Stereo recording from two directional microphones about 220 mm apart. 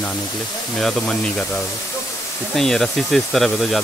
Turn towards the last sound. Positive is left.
turn(degrees=0)  # may be behind; listen again after turning